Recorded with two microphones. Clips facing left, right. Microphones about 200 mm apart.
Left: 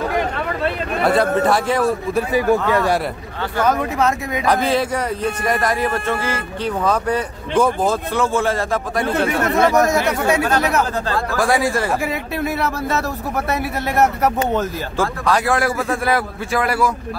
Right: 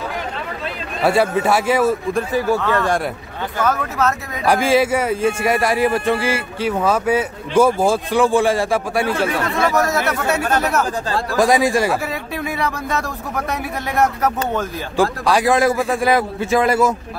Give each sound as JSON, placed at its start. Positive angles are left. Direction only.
{"t": 1.0, "sound": "a man's voice", "side_deg": -10}
{"t": 2.3, "sound": "speech", "side_deg": 15}
{"t": 4.5, "sound": "a man's voice", "side_deg": -5}
{"t": 9.1, "sound": "speech", "side_deg": 25}
{"t": 11.3, "sound": "a man's voice", "side_deg": -15}
{"t": 12.0, "sound": "speech", "side_deg": 10}
{"t": 13.9, "sound": "speech", "side_deg": 5}
{"t": 15.0, "sound": "a man's voice", "side_deg": -15}